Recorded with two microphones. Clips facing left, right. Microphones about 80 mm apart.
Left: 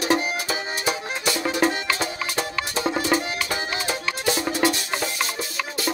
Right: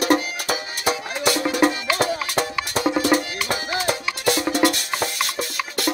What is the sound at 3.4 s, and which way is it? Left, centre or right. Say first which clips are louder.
Music: right 3 dB; right.